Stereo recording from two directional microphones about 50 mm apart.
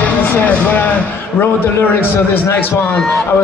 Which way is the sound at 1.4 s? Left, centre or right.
Left.